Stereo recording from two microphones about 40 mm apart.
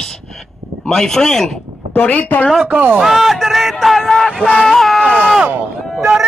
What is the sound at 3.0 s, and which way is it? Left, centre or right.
Speech, centre.